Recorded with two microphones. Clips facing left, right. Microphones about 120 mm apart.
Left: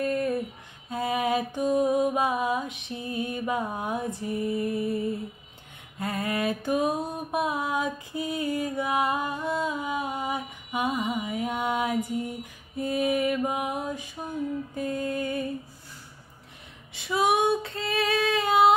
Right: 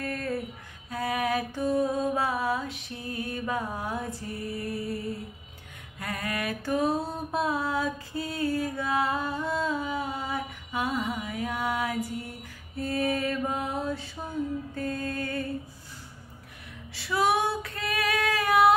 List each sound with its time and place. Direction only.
0.0 s a sound: 15° left (ahead or behind)
0.8 s mantra: 25° left (ahead or behind)
14.8 s music: 15° left (ahead or behind)
16.9 s female singing: 20° left (ahead or behind)